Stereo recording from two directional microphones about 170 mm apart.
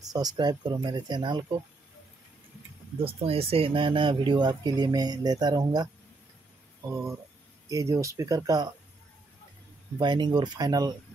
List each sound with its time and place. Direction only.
0.0 s speech: 20° right (ahead or behind)
3.0 s speech: 35° right (ahead or behind)
6.9 s speech: 20° right (ahead or behind)
9.9 s speech: 25° right (ahead or behind)